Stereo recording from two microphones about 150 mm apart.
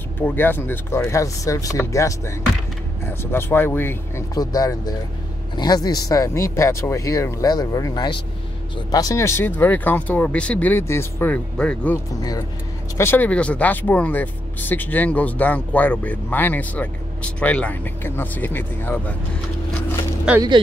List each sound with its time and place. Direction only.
0.2 s speech: 15° left (ahead or behind)
12.1 s speech: 25° left (ahead or behind)
12.9 s speech: 15° left (ahead or behind)
20.3 s speech: 5° right (ahead or behind)